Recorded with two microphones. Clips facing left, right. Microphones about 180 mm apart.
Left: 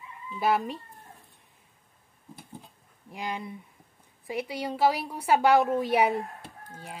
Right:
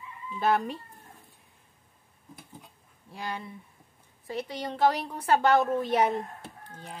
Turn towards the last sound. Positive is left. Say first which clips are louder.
# left 1 dB
turn(degrees=5)  # may be behind; listen again after turning